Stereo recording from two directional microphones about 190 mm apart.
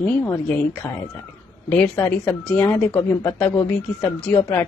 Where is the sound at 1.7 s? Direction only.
10° left (ahead or behind).